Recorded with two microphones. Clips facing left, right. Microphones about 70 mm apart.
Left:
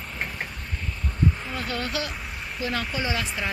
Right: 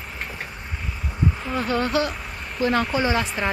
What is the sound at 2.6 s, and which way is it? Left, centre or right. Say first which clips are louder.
Speech: right 8 dB; right.